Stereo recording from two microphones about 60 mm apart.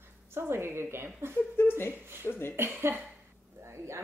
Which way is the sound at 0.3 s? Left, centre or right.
Right.